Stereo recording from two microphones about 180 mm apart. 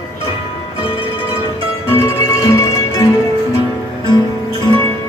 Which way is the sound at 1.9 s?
15° left (ahead or behind).